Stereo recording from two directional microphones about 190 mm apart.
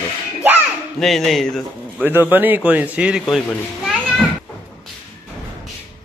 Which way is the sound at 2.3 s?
10° right (ahead or behind).